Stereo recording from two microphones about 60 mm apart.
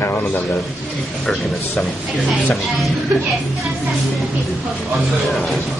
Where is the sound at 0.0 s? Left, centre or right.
Left.